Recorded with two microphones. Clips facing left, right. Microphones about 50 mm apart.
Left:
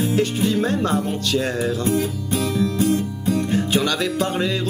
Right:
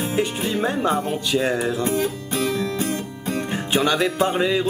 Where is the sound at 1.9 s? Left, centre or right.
Right.